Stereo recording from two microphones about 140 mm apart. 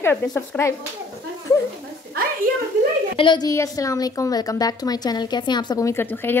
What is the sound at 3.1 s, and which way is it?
Speech, 35° left (ahead or behind).